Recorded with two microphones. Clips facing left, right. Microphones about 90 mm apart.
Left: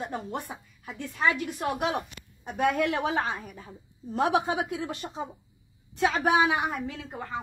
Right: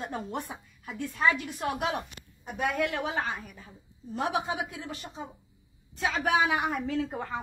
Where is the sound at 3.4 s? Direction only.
40° left (ahead or behind); by 5.1 s 60° left (ahead or behind).